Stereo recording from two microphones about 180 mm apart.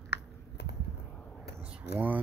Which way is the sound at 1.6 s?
5° right (ahead or behind).